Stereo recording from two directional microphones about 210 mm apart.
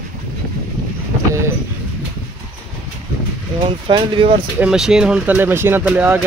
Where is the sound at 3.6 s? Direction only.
25° right (ahead or behind).